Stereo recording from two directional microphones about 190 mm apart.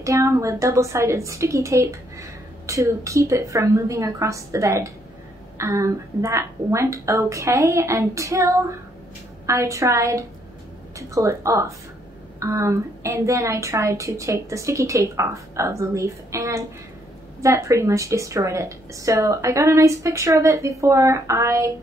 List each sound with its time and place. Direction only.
0.0 s a woman's voice: 15° right (ahead or behind)